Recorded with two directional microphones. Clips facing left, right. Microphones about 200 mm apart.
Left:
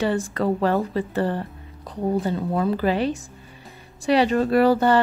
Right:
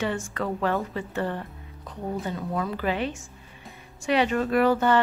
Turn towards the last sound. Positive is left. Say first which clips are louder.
# left 4 dB
turn(degrees=35)  # may be behind; listen again after turning